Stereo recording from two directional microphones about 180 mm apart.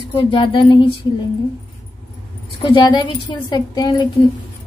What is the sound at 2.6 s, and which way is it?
A woman's voice, 25° left (ahead or behind).